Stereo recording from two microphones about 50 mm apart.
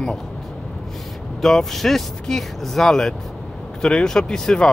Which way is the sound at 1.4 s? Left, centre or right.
Centre.